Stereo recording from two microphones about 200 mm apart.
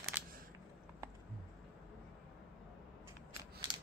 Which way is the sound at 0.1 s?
10° right (ahead or behind).